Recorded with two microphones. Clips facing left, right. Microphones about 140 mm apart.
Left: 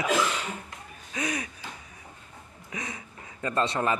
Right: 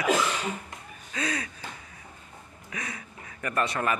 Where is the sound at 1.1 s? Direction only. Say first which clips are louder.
Even; 15° left (ahead or behind).